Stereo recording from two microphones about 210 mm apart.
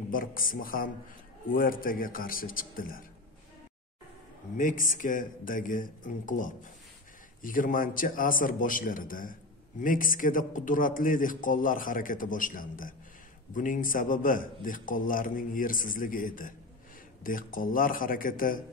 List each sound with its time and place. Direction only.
0.1 s a man's voice: 40° left (ahead or behind)
4.6 s a man's voice: 40° left (ahead or behind)